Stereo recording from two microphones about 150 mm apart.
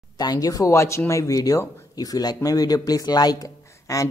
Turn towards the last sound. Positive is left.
turn(degrees=20)  # may be behind; listen again after turning